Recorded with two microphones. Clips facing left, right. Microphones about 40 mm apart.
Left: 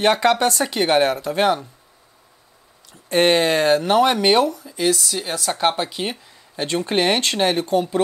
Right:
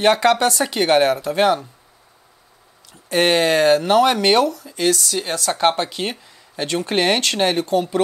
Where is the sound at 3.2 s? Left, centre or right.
Right.